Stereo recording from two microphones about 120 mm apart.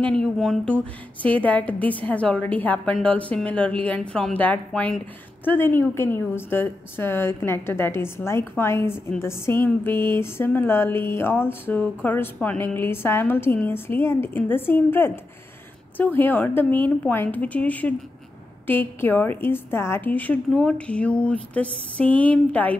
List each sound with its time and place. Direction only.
0.0 s a woman's voice: 5° left (ahead or behind)